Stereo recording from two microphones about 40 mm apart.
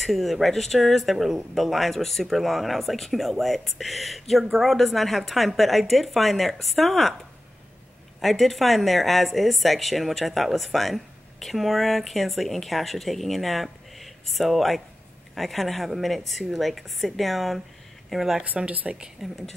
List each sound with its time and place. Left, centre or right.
0.0 s speech: centre
8.2 s speech: centre
18.7 s speech: right
19.2 s speech: centre